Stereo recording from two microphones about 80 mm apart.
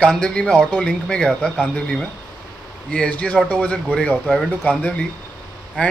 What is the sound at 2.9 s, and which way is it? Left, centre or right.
Speech, centre.